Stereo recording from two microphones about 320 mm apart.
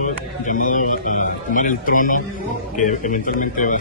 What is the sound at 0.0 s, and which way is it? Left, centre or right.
A man's voice, left.